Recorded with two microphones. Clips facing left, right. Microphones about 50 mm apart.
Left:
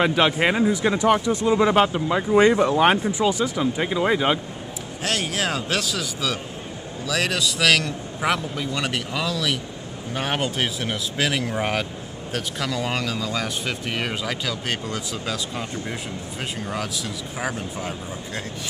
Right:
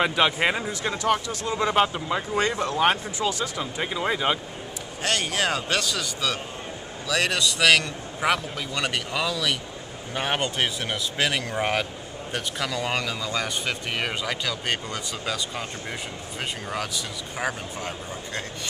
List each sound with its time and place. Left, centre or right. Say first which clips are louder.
0.0 s speech: left 3 dB; centre
2.2 s speech: left 11 dB; centre
16.6 s speech: left 2 dB; centre